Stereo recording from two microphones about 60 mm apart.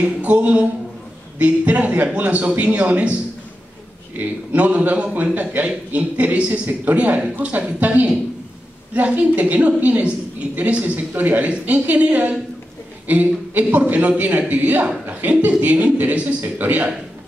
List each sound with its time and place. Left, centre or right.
0.0 s a woman's voice: right
4.2 s a woman's voice: right